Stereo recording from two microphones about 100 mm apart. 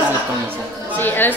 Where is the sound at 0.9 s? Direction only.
20° left (ahead or behind).